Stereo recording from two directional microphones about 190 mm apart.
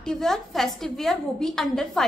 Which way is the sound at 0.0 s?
Centre (ahead or behind).